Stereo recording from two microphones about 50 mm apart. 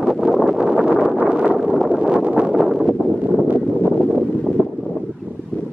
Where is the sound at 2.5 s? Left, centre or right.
Centre.